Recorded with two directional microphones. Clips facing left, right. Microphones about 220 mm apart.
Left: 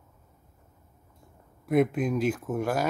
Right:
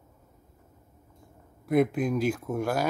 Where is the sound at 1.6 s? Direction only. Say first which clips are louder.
Even; 5° left (ahead or behind).